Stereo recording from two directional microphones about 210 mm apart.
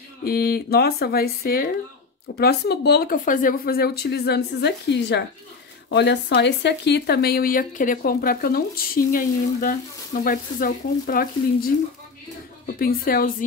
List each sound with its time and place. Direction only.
0.2 s speech: 45° left (ahead or behind)